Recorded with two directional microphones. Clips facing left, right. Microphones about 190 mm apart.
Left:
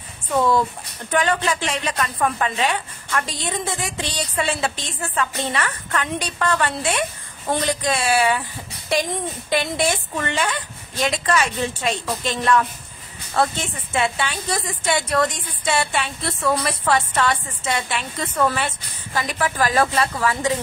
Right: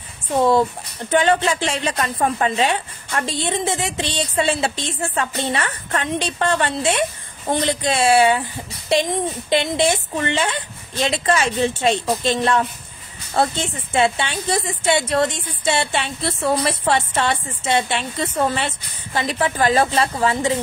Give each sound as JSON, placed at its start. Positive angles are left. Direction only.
{"t": 1.1, "sound": "a woman's voice", "side_deg": -25}